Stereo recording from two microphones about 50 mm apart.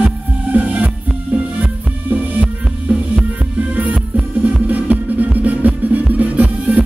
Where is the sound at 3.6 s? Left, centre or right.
Right.